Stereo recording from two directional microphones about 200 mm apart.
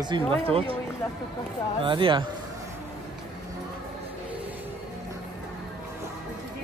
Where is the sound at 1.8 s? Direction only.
25° right (ahead or behind).